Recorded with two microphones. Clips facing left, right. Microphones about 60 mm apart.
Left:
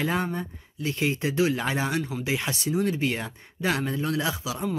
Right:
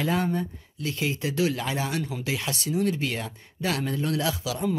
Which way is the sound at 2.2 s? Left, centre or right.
Left.